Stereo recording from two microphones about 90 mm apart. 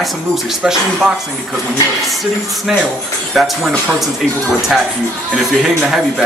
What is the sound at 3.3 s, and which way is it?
Speech, 5° right (ahead or behind).